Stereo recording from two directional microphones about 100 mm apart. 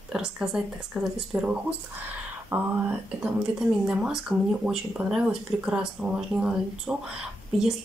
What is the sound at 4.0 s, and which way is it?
Speech, 5° right (ahead or behind).